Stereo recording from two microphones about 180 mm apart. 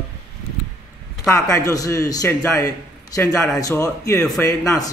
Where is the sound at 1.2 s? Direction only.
20° left (ahead or behind).